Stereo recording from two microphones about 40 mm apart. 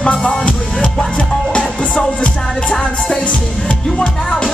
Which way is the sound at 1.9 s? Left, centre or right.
Left.